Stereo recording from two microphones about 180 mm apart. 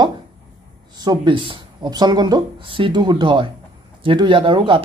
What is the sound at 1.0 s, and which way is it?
Speech, 25° right (ahead or behind).